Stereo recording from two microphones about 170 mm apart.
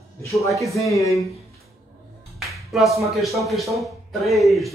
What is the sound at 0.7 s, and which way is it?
Speech, 20° left (ahead or behind).